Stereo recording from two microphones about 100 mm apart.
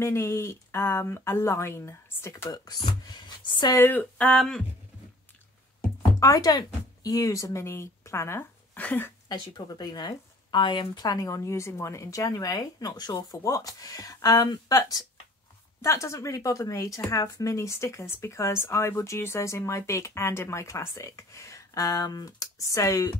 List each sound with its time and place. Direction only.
0.0 s speech: 25° left (ahead or behind)
2.5 s speech: 40° left (ahead or behind)
3.7 s speech: 20° left (ahead or behind)
4.4 s a sound: 5° left (ahead or behind)
6.1 s speech: 35° left (ahead or behind); by 9.1 s 20° left (ahead or behind)
9.3 s speech: 45° left (ahead or behind)